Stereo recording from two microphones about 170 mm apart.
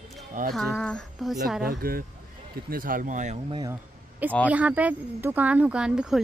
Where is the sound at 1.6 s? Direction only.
60° right (ahead or behind).